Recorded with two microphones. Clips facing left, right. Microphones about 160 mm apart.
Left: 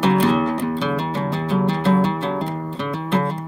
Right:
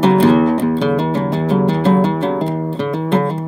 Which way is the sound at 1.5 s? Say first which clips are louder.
Right 4 dB; 40° right (ahead or behind).